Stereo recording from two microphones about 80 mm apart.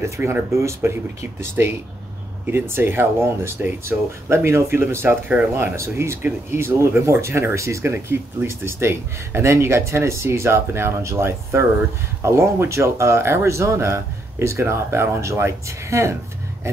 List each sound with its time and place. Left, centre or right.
0.0 s speech: right